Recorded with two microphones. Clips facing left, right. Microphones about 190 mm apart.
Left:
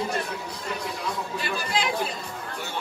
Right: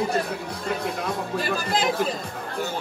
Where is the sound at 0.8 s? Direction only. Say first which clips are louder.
Right 4 dB; 55° right (ahead or behind).